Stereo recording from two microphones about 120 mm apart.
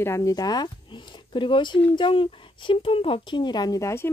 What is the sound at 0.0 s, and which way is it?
Speech, 25° left (ahead or behind).